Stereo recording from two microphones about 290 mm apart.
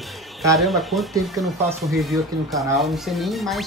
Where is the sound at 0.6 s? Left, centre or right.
Centre.